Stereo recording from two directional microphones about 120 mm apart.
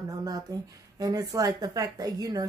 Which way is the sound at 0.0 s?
30° right (ahead or behind).